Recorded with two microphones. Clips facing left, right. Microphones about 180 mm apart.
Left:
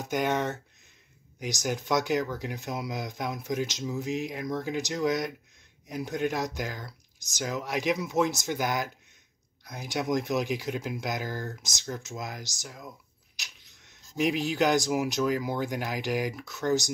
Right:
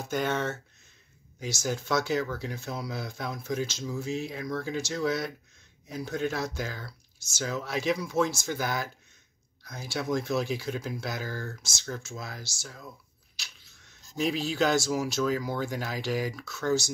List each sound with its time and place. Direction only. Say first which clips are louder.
0.0 s speech: left 1 dB; 15° left (ahead or behind)